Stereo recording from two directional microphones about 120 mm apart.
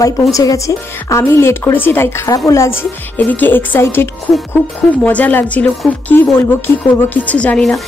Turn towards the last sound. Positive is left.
turn(degrees=10)  # may be behind; listen again after turning